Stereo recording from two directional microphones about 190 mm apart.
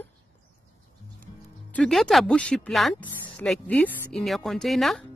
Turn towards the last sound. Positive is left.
turn(degrees=0)  # may be behind; listen again after turning